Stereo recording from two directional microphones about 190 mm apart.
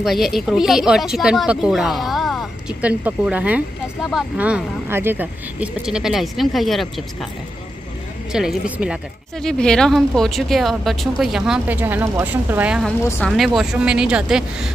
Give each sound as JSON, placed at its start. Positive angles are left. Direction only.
{"t": 0.0, "sound": "speech", "side_deg": 0}
{"t": 8.3, "sound": "speech", "side_deg": -5}